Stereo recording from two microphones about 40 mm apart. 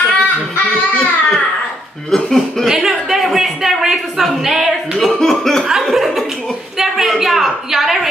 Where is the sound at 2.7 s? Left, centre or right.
Centre.